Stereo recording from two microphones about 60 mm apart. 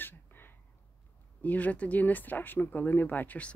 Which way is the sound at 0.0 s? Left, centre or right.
Left.